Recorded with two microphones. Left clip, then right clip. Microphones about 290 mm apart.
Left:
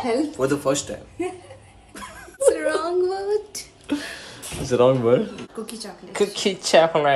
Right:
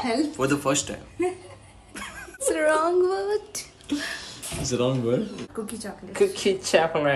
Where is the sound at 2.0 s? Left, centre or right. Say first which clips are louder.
Left 7 dB; centre.